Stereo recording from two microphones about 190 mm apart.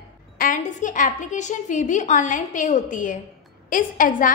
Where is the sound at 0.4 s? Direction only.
45° left (ahead or behind).